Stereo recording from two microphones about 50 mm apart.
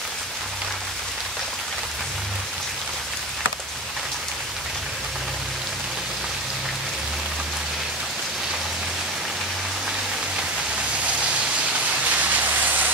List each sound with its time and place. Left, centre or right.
12.1 s vehicle: right